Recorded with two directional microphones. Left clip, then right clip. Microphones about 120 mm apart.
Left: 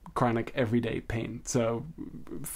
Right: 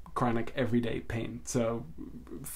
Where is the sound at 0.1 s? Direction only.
35° left (ahead or behind).